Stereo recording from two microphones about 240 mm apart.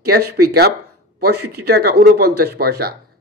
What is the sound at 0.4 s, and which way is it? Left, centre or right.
Speech, right.